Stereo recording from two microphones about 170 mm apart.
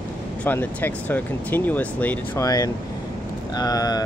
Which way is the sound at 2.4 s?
20° left (ahead or behind).